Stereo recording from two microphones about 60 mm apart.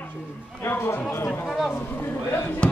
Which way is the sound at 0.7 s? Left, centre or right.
Left.